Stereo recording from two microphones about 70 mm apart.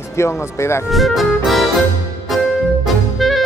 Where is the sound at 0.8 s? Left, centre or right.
Centre.